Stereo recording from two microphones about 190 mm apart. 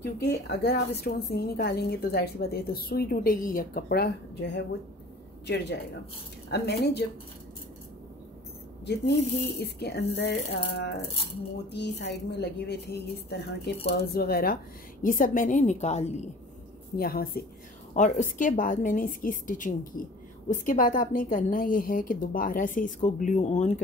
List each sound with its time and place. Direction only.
0.0 s a woman's voice: 60° left (ahead or behind)
6.5 s a woman's voice: 60° left (ahead or behind)
8.8 s a woman's voice: 60° left (ahead or behind); by 16.1 s 35° left (ahead or behind)
16.9 s a woman's voice: 50° left (ahead or behind)
17.9 s a woman's voice: 40° left (ahead or behind)